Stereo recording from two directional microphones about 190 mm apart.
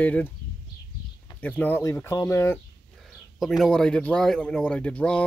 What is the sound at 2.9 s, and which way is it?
Speech, centre (ahead or behind).